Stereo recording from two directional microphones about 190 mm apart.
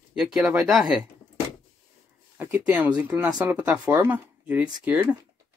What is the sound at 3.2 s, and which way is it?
Speech, 20° right (ahead or behind).